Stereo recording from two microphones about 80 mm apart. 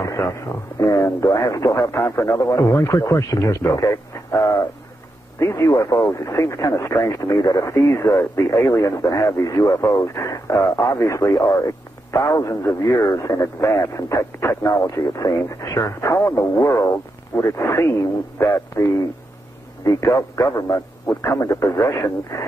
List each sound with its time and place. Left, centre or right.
0.0 s radio: left
0.7 s speech: left
14.7 s speech: left